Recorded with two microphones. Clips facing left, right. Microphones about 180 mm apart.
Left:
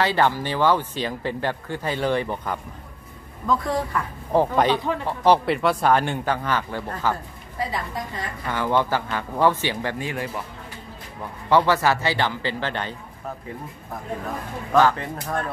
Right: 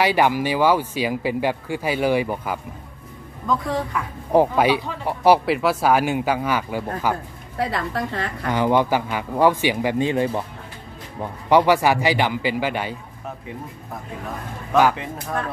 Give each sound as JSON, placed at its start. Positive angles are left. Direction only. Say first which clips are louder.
{"t": 0.0, "sound": "a woman's voice", "louder": "right 3 dB", "side_deg": -10}
{"t": 4.3, "sound": "speech", "louder": "right 3 dB", "side_deg": -10}
{"t": 7.5, "sound": "a woman's voice", "louder": "right 4 dB", "side_deg": -70}
{"t": 8.5, "sound": "speech", "louder": "right 4 dB", "side_deg": -15}
{"t": 9.9, "sound": "speech", "louder": "right 8 dB", "side_deg": -25}
{"t": 11.4, "sound": "speech", "louder": "right 3 dB", "side_deg": -15}
{"t": 15.0, "sound": "a woman's voice", "louder": "even", "side_deg": 0}